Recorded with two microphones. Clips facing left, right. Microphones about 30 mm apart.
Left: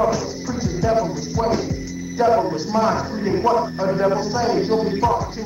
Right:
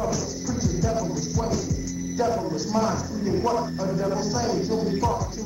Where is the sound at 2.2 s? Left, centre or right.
Left.